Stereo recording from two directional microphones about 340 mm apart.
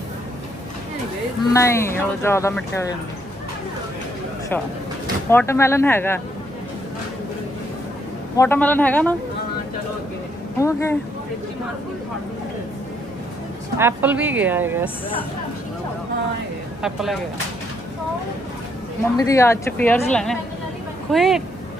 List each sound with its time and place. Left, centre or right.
1.5 s speech: centre
5.3 s speech: centre
8.4 s a woman's voice: centre
10.6 s speech: centre
13.7 s a woman's voice: centre
16.8 s a woman's voice: centre
19.1 s a woman's voice: centre